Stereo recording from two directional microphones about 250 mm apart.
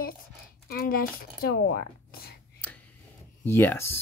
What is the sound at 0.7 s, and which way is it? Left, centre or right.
Speech, left.